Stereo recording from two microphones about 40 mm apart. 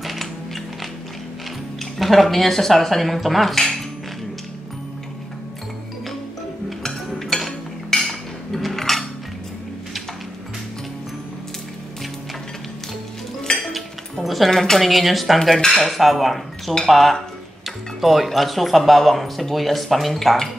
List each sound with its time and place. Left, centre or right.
0.0 s music: centre
2.0 s speech: centre
6.8 s cutlery: centre
13.6 s dishes: centre
14.2 s a sound: centre
14.5 s speech: centre